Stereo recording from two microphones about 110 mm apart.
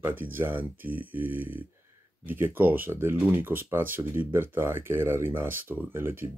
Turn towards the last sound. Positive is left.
turn(degrees=-20)  # may be behind; listen again after turning